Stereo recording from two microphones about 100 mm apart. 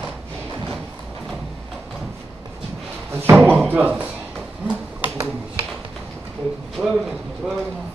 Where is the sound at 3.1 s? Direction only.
25° right (ahead or behind).